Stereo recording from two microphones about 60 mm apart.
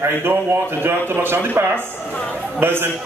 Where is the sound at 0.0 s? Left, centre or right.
Right.